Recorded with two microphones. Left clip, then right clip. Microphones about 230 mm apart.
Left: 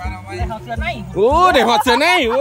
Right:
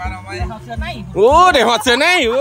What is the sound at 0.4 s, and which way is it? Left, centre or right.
Speech, centre.